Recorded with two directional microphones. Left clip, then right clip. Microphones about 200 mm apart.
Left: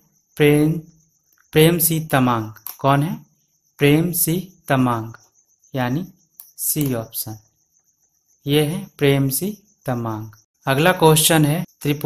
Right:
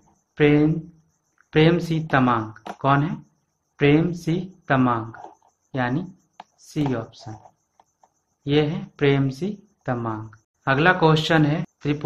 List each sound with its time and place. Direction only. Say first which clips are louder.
0.3 s speech: left 2 dB; 50° left (ahead or behind)
8.5 s speech: left 2 dB; 50° left (ahead or behind)